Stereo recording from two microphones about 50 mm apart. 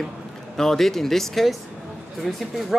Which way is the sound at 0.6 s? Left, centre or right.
Centre.